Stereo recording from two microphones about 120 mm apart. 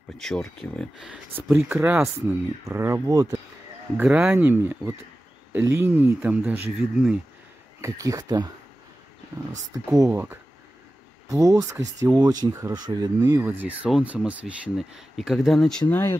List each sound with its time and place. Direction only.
0.2 s speech: 5° left (ahead or behind)
0.9 s speech: 5° right (ahead or behind)
1.5 s speech: 15° right (ahead or behind)
3.9 s speech: 10° right (ahead or behind)
7.8 s speech: 25° right (ahead or behind)
9.7 s speech: 30° right (ahead or behind)
10.1 s speech: 20° right (ahead or behind)
13.4 s speech: 15° right (ahead or behind); by 15.8 s 5° left (ahead or behind)
15.9 s speech: 20° left (ahead or behind)